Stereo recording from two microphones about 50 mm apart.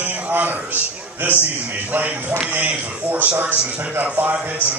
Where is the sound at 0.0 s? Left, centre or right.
Right.